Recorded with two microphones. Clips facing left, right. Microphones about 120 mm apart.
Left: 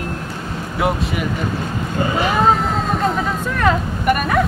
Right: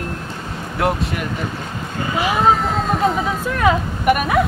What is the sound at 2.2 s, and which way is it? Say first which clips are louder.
Vehicle: right 1 dB; centre (ahead or behind).